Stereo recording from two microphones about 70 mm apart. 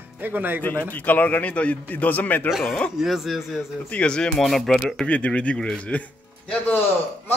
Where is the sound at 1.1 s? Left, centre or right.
Left.